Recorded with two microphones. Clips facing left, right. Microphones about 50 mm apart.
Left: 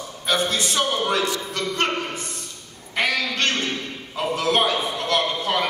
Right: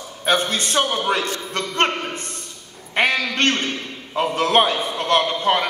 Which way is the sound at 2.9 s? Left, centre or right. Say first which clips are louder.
Right 3 dB; right.